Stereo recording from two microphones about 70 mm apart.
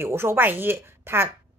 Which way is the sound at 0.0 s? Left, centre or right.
Right.